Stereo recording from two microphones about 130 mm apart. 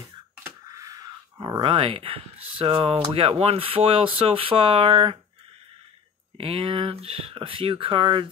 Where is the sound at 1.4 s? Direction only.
40° right (ahead or behind).